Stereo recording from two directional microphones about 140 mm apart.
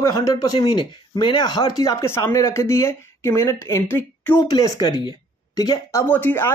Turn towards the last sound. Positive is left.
turn(degrees=15)  # may be behind; listen again after turning